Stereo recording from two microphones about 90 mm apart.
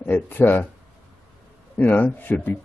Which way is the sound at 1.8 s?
20° left (ahead or behind).